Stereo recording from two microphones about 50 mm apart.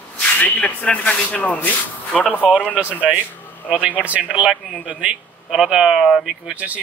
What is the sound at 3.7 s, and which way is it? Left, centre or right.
A man's voice, right.